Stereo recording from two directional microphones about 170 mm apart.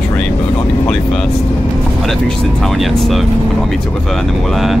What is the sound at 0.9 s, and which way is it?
Speech, 5° left (ahead or behind).